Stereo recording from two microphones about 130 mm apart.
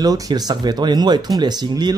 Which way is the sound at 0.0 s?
30° right (ahead or behind).